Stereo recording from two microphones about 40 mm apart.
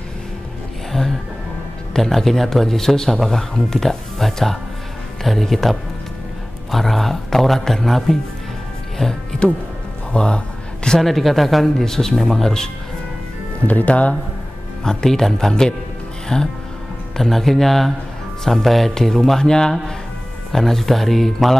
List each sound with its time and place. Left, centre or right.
0.9 s music: centre
2.0 s speech: centre
10.1 s a sound: left
11.0 s speech: centre
13.7 s speech: left
14.8 s speech: centre